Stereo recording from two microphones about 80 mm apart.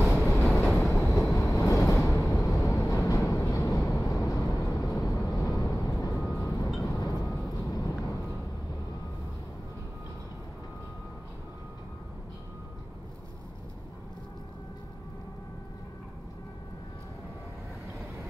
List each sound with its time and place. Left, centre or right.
0.3 s train: left
1.3 s vehicle: left
6.3 s a sound: left
6.8 s vehicle: left